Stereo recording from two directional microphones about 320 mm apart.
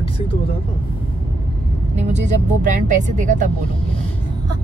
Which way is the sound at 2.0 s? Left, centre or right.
Right.